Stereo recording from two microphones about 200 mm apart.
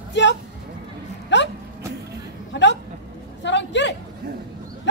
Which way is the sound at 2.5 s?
60° left (ahead or behind).